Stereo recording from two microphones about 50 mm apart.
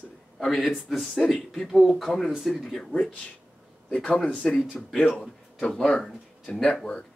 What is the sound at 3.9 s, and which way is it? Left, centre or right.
Speech, centre.